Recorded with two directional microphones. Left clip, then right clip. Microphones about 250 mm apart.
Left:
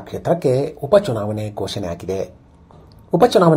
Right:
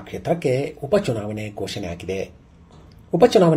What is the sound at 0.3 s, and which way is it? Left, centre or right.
Speech, left.